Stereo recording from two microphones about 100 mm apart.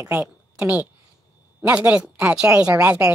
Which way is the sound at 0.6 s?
15° right (ahead or behind).